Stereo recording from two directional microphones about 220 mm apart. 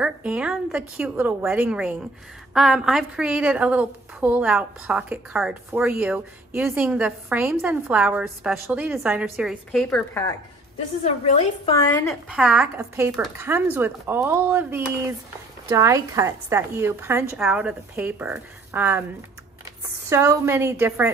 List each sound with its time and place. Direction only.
0.0 s a woman's voice: 5° right (ahead or behind)
11.2 s a woman's voice: 30° left (ahead or behind)
11.9 s a woman's voice: 10° left (ahead or behind)
12.3 s a woman's voice: 5° right (ahead or behind)
20.1 s speech: 15° right (ahead or behind)